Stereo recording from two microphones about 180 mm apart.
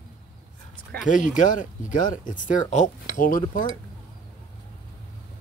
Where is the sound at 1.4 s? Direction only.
45° left (ahead or behind).